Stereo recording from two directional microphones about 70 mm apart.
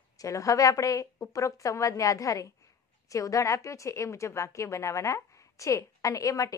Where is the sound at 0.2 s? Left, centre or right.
Left.